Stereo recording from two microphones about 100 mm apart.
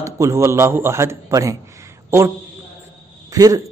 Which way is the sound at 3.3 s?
35° right (ahead or behind).